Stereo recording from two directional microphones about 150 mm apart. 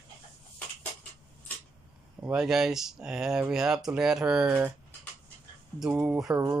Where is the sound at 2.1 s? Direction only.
15° right (ahead or behind).